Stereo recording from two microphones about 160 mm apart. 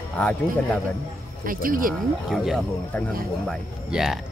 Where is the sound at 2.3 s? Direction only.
Centre (ahead or behind).